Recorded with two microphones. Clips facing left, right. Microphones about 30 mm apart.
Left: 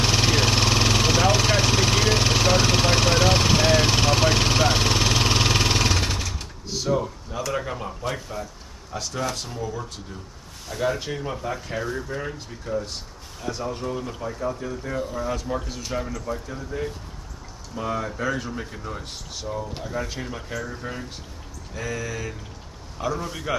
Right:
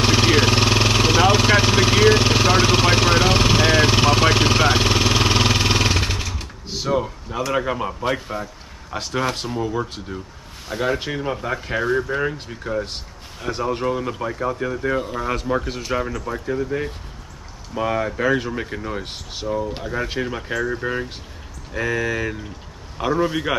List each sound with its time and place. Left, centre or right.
0.0 s vehicle: centre
6.8 s speech: right